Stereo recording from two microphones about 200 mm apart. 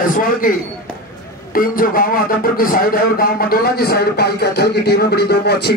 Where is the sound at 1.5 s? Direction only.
45° left (ahead or behind).